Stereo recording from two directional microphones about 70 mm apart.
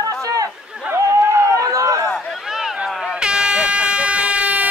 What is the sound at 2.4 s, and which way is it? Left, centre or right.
Air horn, centre.